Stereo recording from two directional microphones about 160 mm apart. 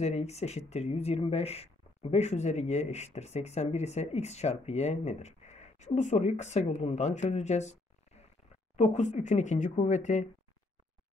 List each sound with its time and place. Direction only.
0.0 s speech: 40° left (ahead or behind)
8.7 s speech: 45° left (ahead or behind)